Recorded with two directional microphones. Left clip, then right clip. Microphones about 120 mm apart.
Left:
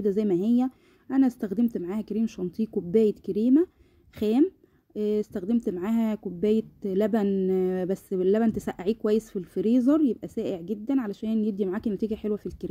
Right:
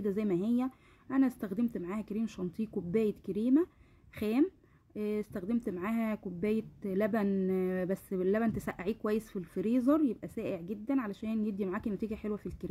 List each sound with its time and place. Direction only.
0.0 s speech: 30° left (ahead or behind)